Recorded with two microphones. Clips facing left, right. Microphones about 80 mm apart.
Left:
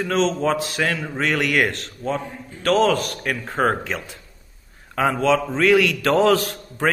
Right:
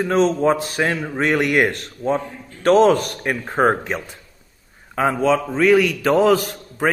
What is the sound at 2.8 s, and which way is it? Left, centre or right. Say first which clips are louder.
Speech: right 4 dB; right.